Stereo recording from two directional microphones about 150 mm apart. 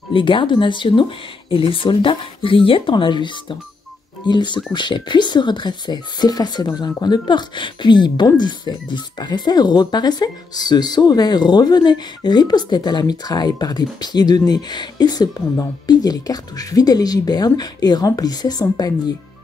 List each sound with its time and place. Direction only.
0.1 s a woman's voice: 35° left (ahead or behind)